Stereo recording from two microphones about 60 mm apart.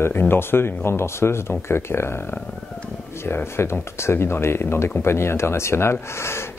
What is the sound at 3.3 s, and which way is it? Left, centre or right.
Speech, left.